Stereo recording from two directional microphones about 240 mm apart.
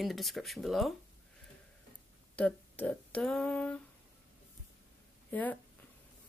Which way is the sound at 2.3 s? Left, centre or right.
Centre.